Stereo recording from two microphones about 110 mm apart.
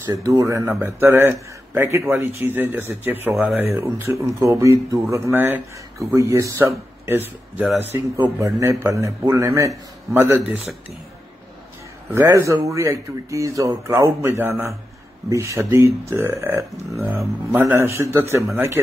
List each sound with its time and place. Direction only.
0.0 s a man's voice: 30° right (ahead or behind)
12.1 s speech: 25° right (ahead or behind)